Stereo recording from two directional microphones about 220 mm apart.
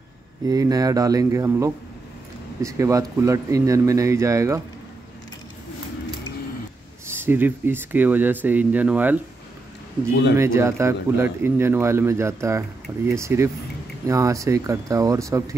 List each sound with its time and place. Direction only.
0.5 s speech: 15° right (ahead or behind)
7.1 s speech: 10° right (ahead or behind)
10.3 s speech: 10° right (ahead or behind)